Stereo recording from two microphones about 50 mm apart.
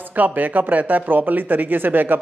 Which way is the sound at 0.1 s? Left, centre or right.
Right.